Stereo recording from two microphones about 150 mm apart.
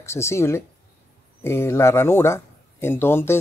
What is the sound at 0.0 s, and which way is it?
Speech, 15° left (ahead or behind).